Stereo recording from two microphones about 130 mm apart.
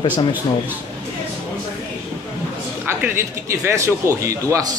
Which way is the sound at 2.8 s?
20° right (ahead or behind).